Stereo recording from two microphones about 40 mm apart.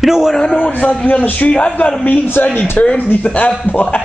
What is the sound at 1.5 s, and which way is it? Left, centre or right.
A man's voice, left.